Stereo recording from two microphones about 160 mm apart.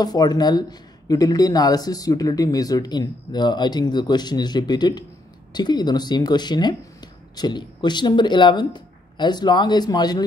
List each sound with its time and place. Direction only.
0.0 s speech: 25° left (ahead or behind)